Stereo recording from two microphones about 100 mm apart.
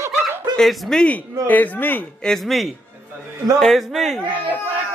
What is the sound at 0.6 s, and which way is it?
Speech, 5° left (ahead or behind).